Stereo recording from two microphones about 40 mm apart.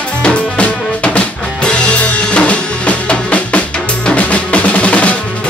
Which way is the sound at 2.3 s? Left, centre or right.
Left.